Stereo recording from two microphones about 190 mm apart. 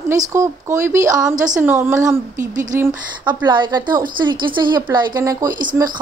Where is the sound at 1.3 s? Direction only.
40° right (ahead or behind).